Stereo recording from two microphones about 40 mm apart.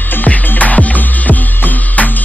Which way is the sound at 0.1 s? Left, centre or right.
Left.